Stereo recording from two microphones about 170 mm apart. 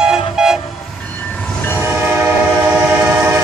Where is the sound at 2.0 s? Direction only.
10° right (ahead or behind).